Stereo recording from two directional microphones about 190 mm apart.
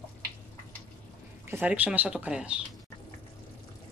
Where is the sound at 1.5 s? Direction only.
10° right (ahead or behind).